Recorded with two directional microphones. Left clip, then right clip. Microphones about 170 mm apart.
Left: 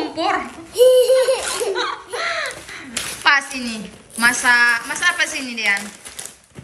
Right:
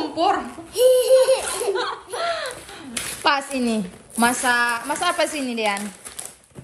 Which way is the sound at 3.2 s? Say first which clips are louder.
Left 4 dB; 15° right (ahead or behind).